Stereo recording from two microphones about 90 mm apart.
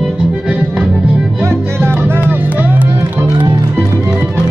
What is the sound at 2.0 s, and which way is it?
Music, 15° right (ahead or behind).